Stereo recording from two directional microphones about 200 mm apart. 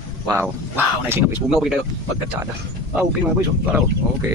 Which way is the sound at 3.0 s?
5° right (ahead or behind).